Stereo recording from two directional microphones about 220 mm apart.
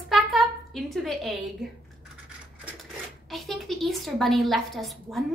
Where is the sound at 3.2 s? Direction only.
Centre (ahead or behind).